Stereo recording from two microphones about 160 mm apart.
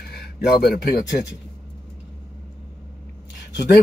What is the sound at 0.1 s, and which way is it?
Speech, 80° left.